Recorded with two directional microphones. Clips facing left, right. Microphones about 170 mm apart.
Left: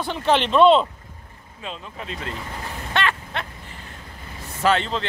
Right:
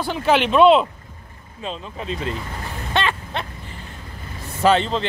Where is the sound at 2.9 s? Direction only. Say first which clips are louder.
Right 2 dB; 25° right (ahead or behind).